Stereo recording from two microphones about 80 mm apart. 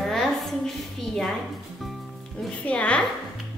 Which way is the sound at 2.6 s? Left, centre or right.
Centre.